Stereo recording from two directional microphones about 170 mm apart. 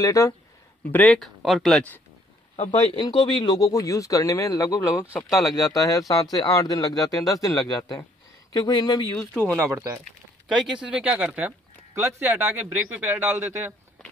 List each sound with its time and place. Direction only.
0.0 s speech: 20° left (ahead or behind)
0.9 s speech: 5° left (ahead or behind)
2.5 s speech: 40° left (ahead or behind)
3.0 s speech: 25° left (ahead or behind)
9.3 s speech: 5° left (ahead or behind)
9.6 s speech: 15° right (ahead or behind)